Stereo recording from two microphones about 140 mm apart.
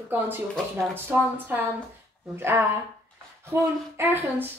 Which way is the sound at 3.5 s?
15° right (ahead or behind).